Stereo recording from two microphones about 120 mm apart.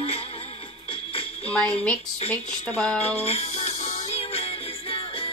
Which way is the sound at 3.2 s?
60° left (ahead or behind).